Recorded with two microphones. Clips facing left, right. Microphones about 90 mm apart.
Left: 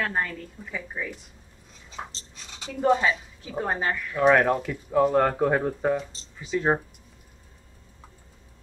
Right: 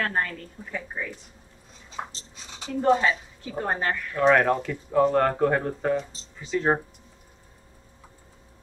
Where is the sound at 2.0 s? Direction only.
25° right (ahead or behind).